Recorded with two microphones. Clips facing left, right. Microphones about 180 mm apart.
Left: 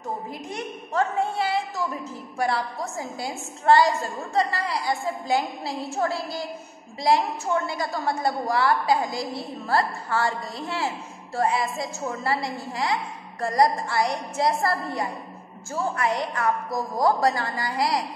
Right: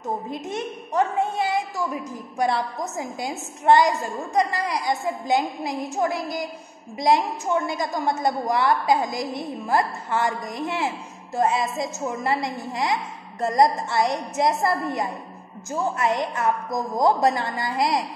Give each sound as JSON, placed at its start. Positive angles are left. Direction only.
{"t": 0.3, "sound": "a woman's voice", "side_deg": -20}